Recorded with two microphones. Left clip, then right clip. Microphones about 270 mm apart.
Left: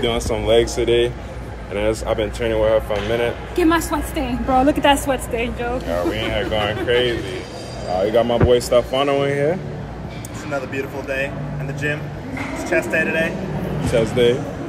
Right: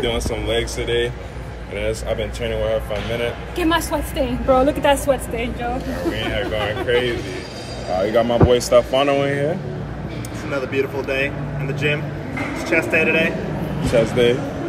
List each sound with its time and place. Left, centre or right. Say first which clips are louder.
0.0 s speech: left 2 dB; centre
3.5 s a woman's voice: left 2 dB; centre
6.1 s a woman's voice: left 1 dB; centre
10.5 s a woman's voice: right 3 dB; centre
12.6 s a woman's voice: right 2 dB; centre
13.9 s speech: even; centre